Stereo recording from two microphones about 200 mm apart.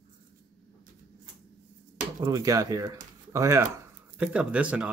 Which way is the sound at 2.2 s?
20° right (ahead or behind).